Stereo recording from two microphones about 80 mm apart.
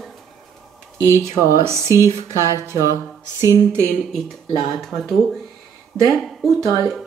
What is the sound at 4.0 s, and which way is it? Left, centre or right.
Speech, centre.